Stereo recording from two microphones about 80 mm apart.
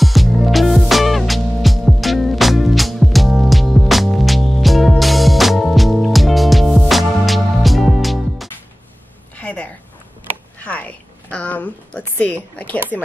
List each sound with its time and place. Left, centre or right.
0.0 s music: centre
9.4 s a sound: centre
12.5 s a woman's voice: centre